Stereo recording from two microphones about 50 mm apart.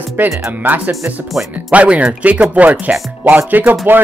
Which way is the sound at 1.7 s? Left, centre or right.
Right.